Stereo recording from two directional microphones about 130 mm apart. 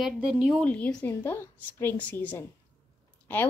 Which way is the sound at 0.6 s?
10° left (ahead or behind).